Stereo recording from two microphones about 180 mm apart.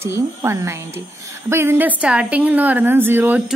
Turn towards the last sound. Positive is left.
turn(degrees=-10)  # may be behind; listen again after turning